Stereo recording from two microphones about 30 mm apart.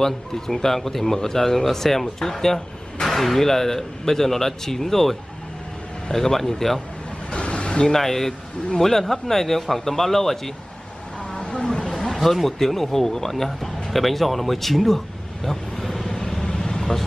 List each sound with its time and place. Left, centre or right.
0.0 s speech: centre
6.1 s speech: centre
7.2 s a sound: left
7.9 s speech: centre
11.4 s a sound: left
12.0 s speech: centre
15.4 s vehicle: centre